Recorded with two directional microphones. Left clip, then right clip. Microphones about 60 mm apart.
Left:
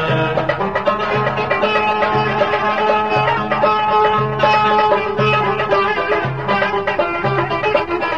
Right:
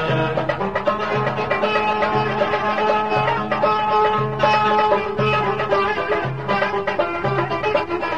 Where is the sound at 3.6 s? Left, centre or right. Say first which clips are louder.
Left 3 dB; left.